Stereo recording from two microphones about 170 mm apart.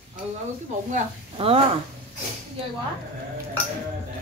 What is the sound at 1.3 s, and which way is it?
Speech, 35° right (ahead or behind).